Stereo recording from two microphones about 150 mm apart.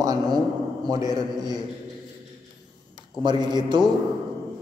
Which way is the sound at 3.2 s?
30° right (ahead or behind).